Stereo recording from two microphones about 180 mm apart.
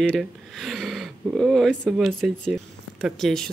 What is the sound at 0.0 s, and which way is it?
Speech, centre (ahead or behind).